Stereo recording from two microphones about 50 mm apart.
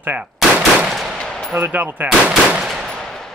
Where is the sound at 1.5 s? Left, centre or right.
Right.